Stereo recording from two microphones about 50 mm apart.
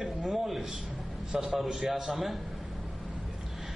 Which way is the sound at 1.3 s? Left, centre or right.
Centre.